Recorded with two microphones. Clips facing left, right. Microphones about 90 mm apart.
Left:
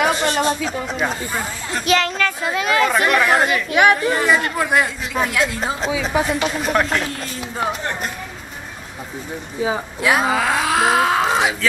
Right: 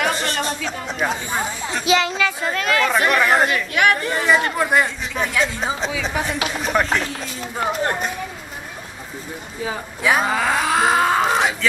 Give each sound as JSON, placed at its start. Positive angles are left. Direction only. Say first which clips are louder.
{"t": 0.0, "sound": "a sound", "louder": "left 4 dB", "side_deg": 0}
{"t": 0.7, "sound": "speech", "louder": "left 1 dB", "side_deg": 0}
{"t": 2.5, "sound": "speech", "louder": "left 4 dB", "side_deg": 10}
{"t": 2.9, "sound": "speech", "louder": "left 1 dB", "side_deg": 0}
{"t": 3.7, "sound": "speech", "louder": "left 5 dB", "side_deg": 20}
{"t": 4.0, "sound": "speech", "louder": "left 1 dB", "side_deg": 0}
{"t": 9.6, "sound": "speech", "louder": "left 6 dB", "side_deg": 20}
{"t": 10.0, "sound": "speech", "louder": "left 1 dB", "side_deg": 0}